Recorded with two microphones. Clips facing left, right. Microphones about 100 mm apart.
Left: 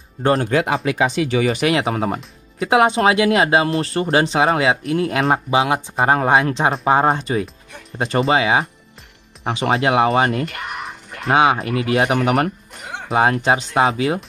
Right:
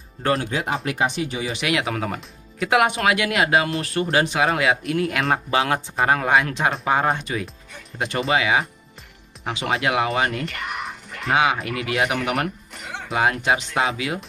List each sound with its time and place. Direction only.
0.4 s speech: 65° left (ahead or behind)
1.2 s speech: 90° left
1.5 s speech: 35° left (ahead or behind)
5.5 s speech: 15° left (ahead or behind)
5.9 s speech: 30° left (ahead or behind)